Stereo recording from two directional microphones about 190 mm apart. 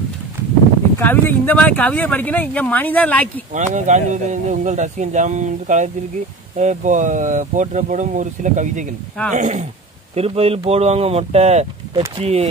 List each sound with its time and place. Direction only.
0.9 s speech: 10° left (ahead or behind)
3.5 s speech: 40° right (ahead or behind)